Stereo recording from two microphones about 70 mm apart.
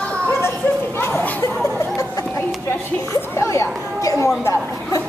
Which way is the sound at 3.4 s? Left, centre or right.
Left.